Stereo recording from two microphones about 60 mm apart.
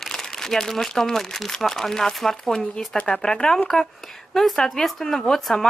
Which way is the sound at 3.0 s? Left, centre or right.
Left.